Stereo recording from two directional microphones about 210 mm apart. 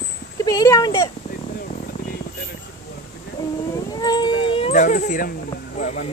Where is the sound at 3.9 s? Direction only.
20° left (ahead or behind); by 5.3 s 35° left (ahead or behind).